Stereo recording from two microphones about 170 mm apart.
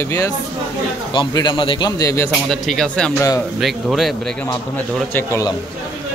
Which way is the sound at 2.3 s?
Centre (ahead or behind).